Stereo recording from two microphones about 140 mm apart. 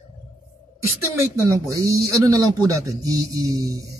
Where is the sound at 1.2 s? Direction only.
25° right (ahead or behind).